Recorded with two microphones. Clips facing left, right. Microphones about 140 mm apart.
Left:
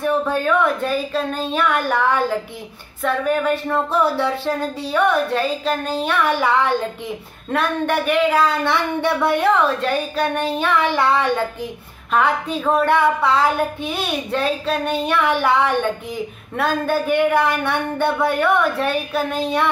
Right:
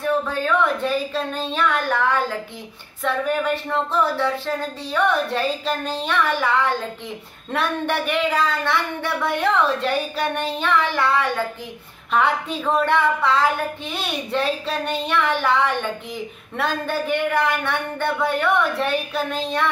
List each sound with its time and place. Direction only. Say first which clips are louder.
0.0 s speech: left 3 dB; 10° left (ahead or behind)
7.5 s speech: left 3 dB; centre (ahead or behind); by 11.4 s 20° left (ahead or behind)
12.1 s a woman's voice: left 2 dB; centre (ahead or behind)